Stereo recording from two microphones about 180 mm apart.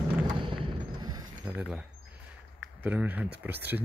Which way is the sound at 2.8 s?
10° right (ahead or behind).